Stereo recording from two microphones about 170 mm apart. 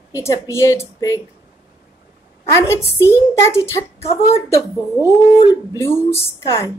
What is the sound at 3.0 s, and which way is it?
Speech, 15° left (ahead or behind).